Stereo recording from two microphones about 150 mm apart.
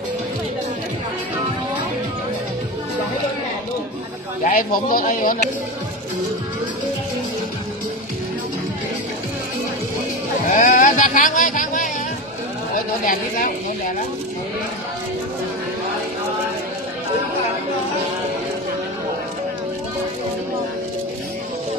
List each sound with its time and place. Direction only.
4.5 s speech: 70° left (ahead or behind)
10.5 s a sound: 60° left (ahead or behind)
13.0 s speech: 65° left (ahead or behind)